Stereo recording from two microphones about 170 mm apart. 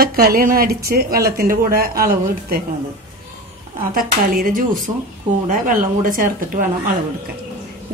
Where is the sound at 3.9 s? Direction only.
55° right (ahead or behind).